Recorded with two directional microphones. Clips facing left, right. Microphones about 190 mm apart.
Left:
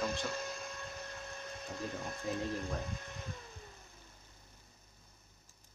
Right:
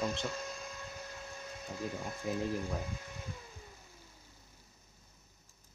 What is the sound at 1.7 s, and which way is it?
Speech, 5° right (ahead or behind).